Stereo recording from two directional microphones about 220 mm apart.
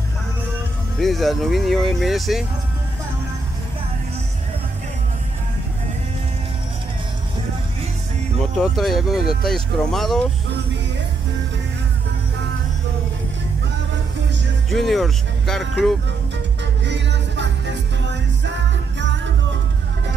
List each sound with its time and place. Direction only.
0.9 s speech: centre (ahead or behind)
8.5 s speech: centre (ahead or behind)
14.7 s speech: centre (ahead or behind)
16.8 s music: 55° right (ahead or behind)